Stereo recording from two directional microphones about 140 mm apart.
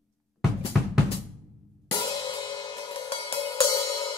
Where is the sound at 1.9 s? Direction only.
30° left (ahead or behind).